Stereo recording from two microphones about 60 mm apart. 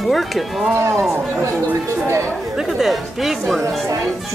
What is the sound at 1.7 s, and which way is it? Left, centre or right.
Speech, right.